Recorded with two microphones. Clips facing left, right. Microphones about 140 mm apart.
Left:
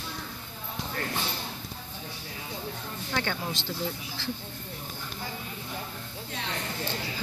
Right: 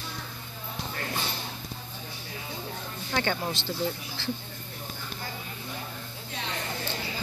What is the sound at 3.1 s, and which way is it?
Speech, centre (ahead or behind).